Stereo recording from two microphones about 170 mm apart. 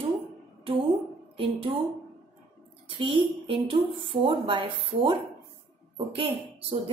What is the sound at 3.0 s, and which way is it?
Speech, 30° right (ahead or behind).